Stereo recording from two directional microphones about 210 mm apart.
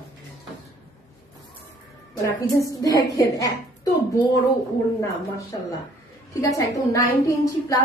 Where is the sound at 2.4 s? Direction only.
15° left (ahead or behind).